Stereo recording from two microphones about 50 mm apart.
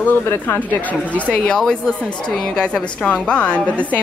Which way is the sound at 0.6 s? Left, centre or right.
Left.